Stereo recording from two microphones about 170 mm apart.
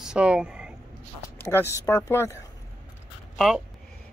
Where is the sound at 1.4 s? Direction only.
10° left (ahead or behind).